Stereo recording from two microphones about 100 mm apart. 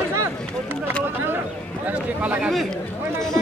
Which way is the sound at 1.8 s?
15° right (ahead or behind).